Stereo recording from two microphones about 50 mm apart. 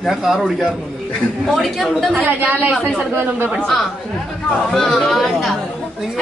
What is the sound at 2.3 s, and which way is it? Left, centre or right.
Speech, right.